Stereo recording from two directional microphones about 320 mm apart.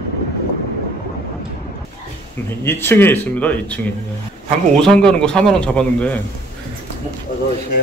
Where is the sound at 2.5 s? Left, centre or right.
Centre.